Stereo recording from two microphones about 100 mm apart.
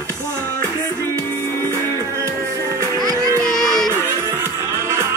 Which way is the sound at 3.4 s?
5° left (ahead or behind).